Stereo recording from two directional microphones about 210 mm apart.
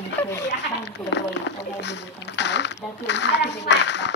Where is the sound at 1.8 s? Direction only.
55° left (ahead or behind).